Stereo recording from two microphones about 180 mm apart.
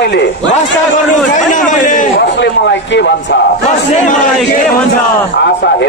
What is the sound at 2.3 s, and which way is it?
A man's voice, 75° left (ahead or behind).